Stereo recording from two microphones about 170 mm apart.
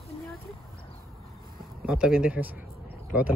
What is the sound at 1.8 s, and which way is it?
Speech, 5° right (ahead or behind).